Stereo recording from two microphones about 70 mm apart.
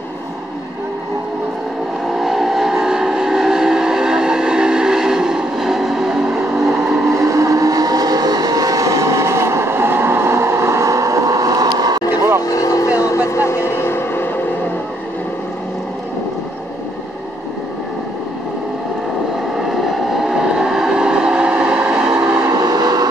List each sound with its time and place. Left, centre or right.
2.1 s vehicle: centre
7.2 s vehicle: right
12.4 s vehicle: left
19.7 s vehicle: centre
22.4 s train: right